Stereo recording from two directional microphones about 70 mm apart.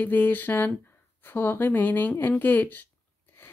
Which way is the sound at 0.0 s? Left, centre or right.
Left.